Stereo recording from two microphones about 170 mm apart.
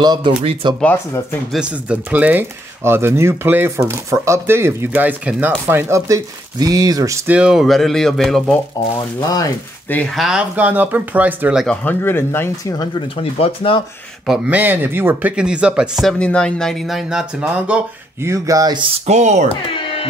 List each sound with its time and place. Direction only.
0.0 s speech: 25° right (ahead or behind)
0.7 s speech: 5° left (ahead or behind)
1.6 s speech: 10° right (ahead or behind)
7.3 s speech: 5° right (ahead or behind)
8.9 s speech: 20° left (ahead or behind)
9.8 s speech: 5° left (ahead or behind); by 11.6 s 10° right (ahead or behind)
11.6 s speech: 10° left (ahead or behind)
13.2 s speech: 35° left (ahead or behind)
14.2 s speech: 5° right (ahead or behind); by 18.9 s 25° right (ahead or behind)
19.0 s speech: 40° right (ahead or behind)
19.5 s speech: 30° left (ahead or behind)